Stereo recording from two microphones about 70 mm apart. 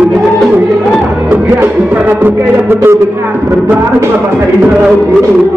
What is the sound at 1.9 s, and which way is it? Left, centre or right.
Speech, right.